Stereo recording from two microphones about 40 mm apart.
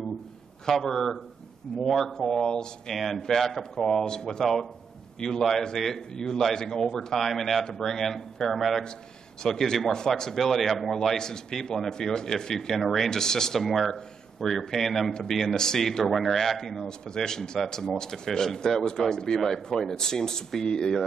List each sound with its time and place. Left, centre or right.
0.7 s a man's voice: centre
2.9 s a man's voice: centre; by 5.4 s left
5.8 s a man's voice: centre
17.0 s a man's voice: centre